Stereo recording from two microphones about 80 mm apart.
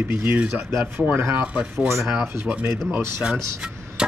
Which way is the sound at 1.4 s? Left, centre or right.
Centre.